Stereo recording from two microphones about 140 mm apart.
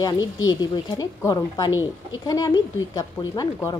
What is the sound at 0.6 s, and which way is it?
A woman's voice, 30° left (ahead or behind).